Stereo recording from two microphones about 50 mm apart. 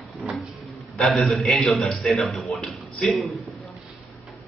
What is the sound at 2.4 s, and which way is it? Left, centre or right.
Speech, centre.